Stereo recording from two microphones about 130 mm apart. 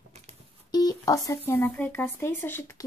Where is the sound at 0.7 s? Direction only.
30° left (ahead or behind).